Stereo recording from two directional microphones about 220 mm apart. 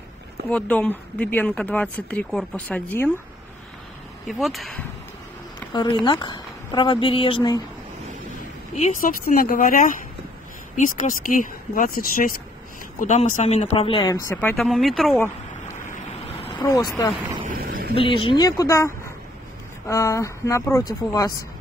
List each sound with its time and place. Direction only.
0.5 s speech: 5° left (ahead or behind)
4.3 s speech: centre (ahead or behind)
5.7 s speech: 20° left (ahead or behind)
8.7 s speech: 35° left (ahead or behind); by 15.2 s centre (ahead or behind)
15.9 s vehicle: 25° left (ahead or behind)
16.6 s speech: 15° left (ahead or behind)
17.5 s a sound: 40° right (ahead or behind)
17.9 s speech: 25° left (ahead or behind)
19.9 s speech: 15° left (ahead or behind)